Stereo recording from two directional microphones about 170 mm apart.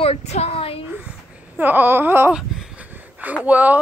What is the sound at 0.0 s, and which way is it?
Speech, 40° left (ahead or behind).